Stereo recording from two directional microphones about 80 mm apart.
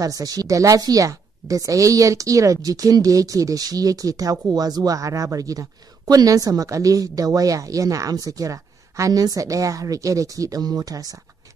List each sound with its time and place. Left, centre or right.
0.0 s a woman's voice: right